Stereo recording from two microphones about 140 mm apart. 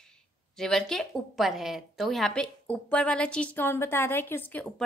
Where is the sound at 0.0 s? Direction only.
5° left (ahead or behind).